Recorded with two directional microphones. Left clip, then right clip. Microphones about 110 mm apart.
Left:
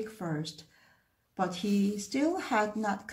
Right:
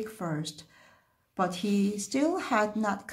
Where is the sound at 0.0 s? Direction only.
35° right (ahead or behind).